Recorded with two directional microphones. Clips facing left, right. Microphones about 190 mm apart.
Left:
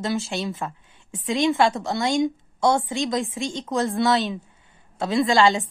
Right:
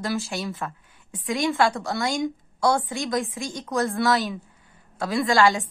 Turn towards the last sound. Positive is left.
turn(degrees=20)  # may be behind; listen again after turning